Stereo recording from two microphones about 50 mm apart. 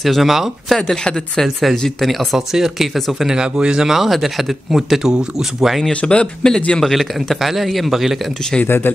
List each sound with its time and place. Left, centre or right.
0.0 s a man's voice: centre
0.7 s a man's voice: centre
5.9 s speech: left
6.8 s a man's voice: centre
8.6 s speech: left